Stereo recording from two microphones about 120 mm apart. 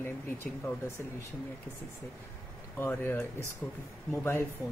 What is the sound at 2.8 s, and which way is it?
Speech, 20° left (ahead or behind).